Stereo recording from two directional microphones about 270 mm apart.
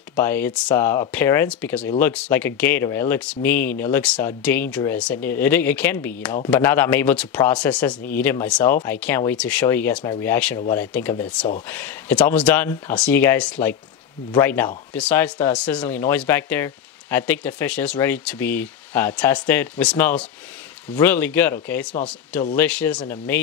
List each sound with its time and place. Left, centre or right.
0.1 s speech: centre
22.7 s speech: centre